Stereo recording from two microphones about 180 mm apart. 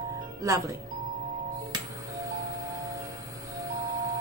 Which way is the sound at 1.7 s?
20° right (ahead or behind).